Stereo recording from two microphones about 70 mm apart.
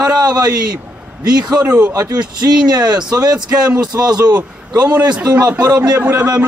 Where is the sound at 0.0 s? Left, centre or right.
Right.